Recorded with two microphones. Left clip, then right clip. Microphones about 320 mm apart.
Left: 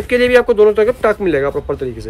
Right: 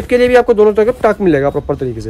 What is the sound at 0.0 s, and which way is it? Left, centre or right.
Speech, right.